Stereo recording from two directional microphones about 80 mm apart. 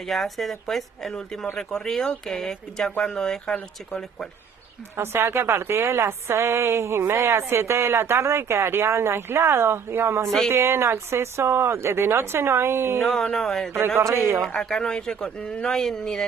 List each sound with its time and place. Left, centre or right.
0.0 s speech: centre
4.9 s a woman's voice: right
13.0 s speech: centre
13.7 s a woman's voice: right
14.4 s speech: centre